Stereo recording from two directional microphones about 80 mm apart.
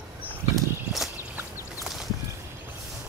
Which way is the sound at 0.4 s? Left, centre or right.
Left.